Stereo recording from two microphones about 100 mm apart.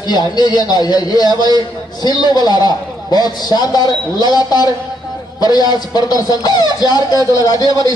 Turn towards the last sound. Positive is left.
turn(degrees=40)  # may be behind; listen again after turning